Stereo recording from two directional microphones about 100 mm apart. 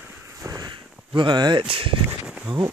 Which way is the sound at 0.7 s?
55° right (ahead or behind).